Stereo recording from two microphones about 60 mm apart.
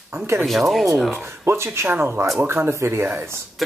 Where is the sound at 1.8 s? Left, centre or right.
Right.